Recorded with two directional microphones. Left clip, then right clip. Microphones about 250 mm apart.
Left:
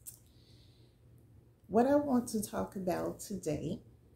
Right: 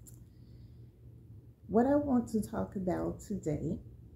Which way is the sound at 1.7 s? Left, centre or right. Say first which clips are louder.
Even; centre.